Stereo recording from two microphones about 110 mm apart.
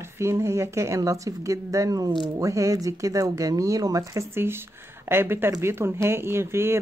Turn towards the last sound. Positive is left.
turn(degrees=-25)  # may be behind; listen again after turning